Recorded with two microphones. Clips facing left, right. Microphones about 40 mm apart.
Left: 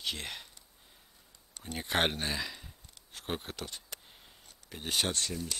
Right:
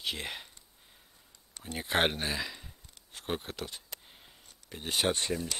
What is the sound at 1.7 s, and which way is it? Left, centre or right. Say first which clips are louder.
Speech: right 2 dB; centre.